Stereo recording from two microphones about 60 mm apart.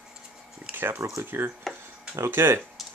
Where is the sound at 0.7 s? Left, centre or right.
Right.